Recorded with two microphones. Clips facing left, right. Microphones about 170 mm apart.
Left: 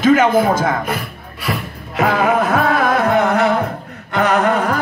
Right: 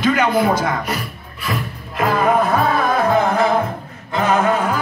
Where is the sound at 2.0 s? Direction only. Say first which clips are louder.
Left 1 dB; 75° left (ahead or behind).